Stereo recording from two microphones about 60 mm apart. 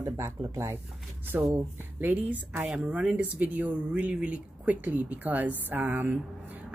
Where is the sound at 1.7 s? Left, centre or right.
Right.